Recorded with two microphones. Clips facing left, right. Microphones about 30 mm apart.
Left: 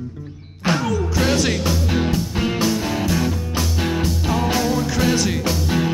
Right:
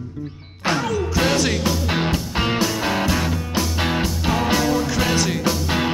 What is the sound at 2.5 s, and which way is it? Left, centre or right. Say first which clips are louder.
Music: even; centre.